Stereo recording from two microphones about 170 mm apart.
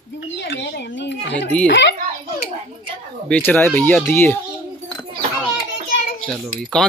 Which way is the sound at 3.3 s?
10° left (ahead or behind).